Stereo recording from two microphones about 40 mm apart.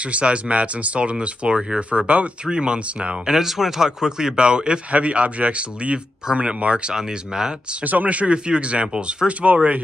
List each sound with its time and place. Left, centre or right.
0.0 s speech: right
3.3 s speech: centre
7.8 s speech: right; by 9.3 s centre
9.4 s speech: right